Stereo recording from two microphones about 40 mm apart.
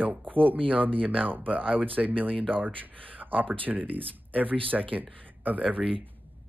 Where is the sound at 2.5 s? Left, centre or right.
Right.